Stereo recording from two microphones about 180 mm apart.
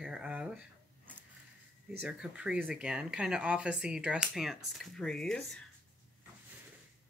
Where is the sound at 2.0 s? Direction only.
5° right (ahead or behind).